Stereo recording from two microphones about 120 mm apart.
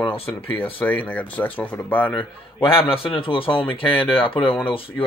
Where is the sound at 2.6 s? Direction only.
50° left (ahead or behind).